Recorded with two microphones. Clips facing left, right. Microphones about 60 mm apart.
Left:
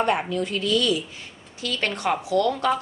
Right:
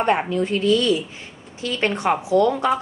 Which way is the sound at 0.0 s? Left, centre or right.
Right.